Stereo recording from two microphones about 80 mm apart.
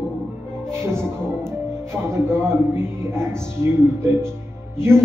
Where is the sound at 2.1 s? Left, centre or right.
Right.